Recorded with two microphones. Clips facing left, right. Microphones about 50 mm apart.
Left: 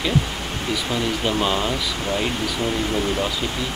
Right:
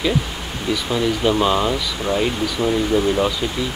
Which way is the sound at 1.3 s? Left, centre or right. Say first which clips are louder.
Right 4 dB; centre.